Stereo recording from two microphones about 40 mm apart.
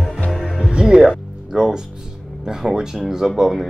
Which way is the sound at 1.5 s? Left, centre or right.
Centre.